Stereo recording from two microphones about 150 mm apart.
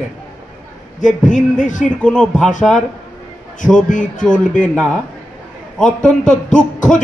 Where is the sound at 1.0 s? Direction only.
55° left (ahead or behind).